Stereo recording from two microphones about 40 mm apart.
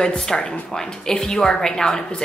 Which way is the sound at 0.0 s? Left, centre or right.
Centre.